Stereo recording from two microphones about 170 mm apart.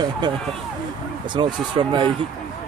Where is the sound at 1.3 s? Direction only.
25° right (ahead or behind).